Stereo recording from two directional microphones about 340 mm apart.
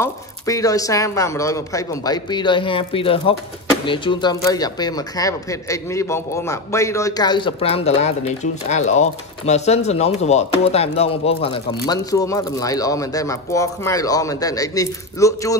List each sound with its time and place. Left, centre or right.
0.0 s speech: centre